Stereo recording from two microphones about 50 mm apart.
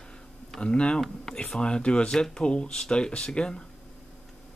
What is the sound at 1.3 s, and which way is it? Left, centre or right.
Speech, centre.